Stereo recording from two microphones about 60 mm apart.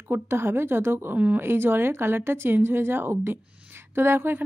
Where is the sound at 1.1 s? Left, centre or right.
Right.